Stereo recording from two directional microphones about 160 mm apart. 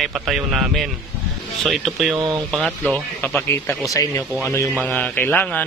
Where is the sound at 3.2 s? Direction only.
15° left (ahead or behind).